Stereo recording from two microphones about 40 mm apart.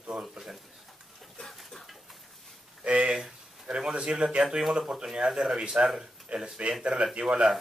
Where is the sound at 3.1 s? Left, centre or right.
Centre.